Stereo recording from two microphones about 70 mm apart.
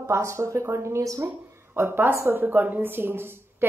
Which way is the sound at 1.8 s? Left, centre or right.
Right.